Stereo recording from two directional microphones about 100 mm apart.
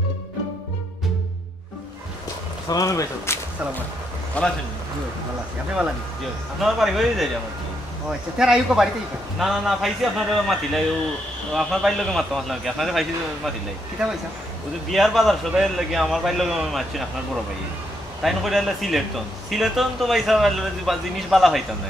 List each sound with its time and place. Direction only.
2.7 s speech: 35° left (ahead or behind)
4.4 s a man's voice: 15° left (ahead or behind)
6.6 s a man's voice: 5° right (ahead or behind)
8.4 s a man's voice: 5° right (ahead or behind)
14.9 s a man's voice: centre (ahead or behind)
18.2 s a man's voice: centre (ahead or behind)